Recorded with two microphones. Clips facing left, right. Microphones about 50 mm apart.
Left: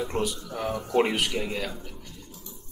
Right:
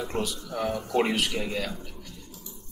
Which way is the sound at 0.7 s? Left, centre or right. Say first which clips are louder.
Left 2 dB; left.